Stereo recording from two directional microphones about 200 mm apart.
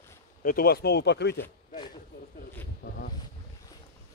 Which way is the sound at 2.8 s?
45° left (ahead or behind).